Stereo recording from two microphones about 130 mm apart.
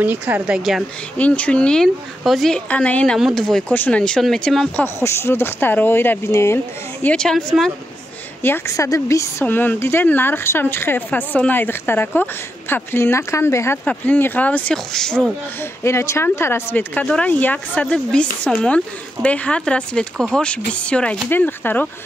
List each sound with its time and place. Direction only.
0.0 s a woman's voice: 15° right (ahead or behind)
1.1 s speech: 10° left (ahead or behind)
4.7 s speech: 20° left (ahead or behind)
8.4 s speech: 15° left (ahead or behind)
15.6 s speech: 20° left (ahead or behind)